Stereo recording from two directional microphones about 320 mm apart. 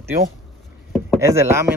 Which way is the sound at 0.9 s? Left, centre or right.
Centre.